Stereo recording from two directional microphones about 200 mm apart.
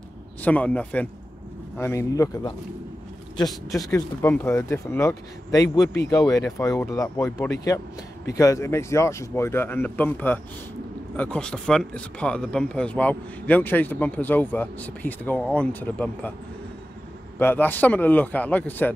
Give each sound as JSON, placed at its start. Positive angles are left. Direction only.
{"t": 0.4, "sound": "speech", "side_deg": 5}
{"t": 3.4, "sound": "speech", "side_deg": 0}
{"t": 3.9, "sound": "speech", "side_deg": 10}
{"t": 17.4, "sound": "speech", "side_deg": 10}